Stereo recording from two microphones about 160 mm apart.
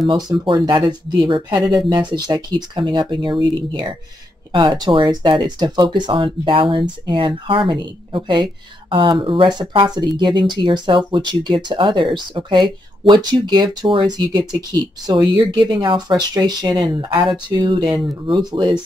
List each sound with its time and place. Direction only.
0.1 s speech: 25° right (ahead or behind)
4.5 s speech: 30° right (ahead or behind)